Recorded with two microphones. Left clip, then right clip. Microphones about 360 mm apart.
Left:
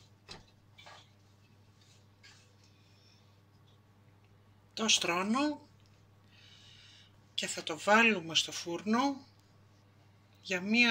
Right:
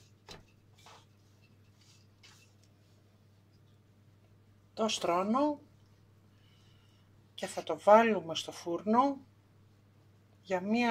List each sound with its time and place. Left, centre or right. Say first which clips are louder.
4.7 s speech: left 1 dB; centre
7.3 s speech: even; centre
10.4 s speech: left 3 dB; centre